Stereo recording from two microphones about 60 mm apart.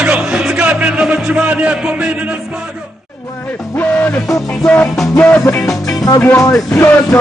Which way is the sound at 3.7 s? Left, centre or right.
Left.